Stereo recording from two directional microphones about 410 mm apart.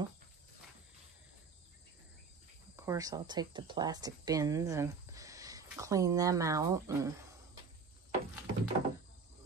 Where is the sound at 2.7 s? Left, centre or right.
Centre.